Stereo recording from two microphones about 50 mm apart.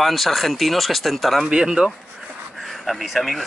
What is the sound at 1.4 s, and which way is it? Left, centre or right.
Speech, centre.